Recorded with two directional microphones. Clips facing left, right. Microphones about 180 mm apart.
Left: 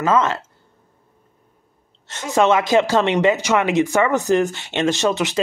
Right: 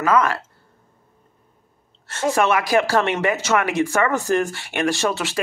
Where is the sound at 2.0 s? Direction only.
20° left (ahead or behind).